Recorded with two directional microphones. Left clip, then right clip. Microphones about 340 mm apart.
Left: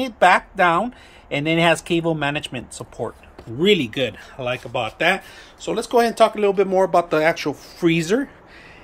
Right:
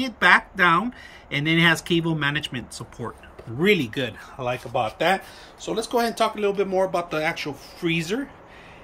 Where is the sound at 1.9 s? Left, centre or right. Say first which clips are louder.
Left 3 dB; centre.